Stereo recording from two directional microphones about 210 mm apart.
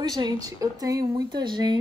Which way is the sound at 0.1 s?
20° right (ahead or behind).